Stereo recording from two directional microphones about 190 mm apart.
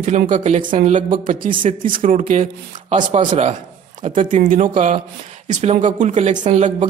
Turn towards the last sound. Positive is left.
turn(degrees=-40)  # may be behind; listen again after turning